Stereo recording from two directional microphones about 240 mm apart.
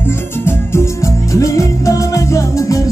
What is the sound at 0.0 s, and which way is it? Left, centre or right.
Music, centre.